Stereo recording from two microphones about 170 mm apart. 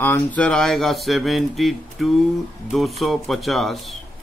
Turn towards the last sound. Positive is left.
turn(degrees=0)  # may be behind; listen again after turning